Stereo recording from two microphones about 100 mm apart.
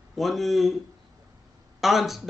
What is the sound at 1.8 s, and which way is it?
Speech, centre (ahead or behind).